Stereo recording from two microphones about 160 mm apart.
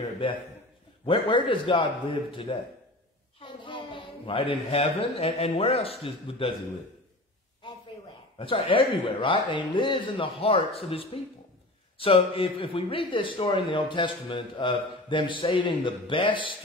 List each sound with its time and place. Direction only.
1.0 s a child's voice: 35° left (ahead or behind)
8.4 s a child's voice: 35° left (ahead or behind)